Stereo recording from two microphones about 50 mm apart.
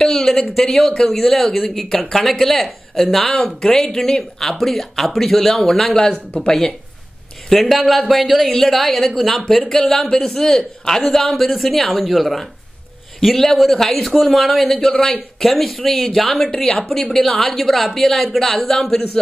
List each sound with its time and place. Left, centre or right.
0.0 s speech: centre
7.4 s speech: centre
14.9 s speech: centre
15.3 s speech: centre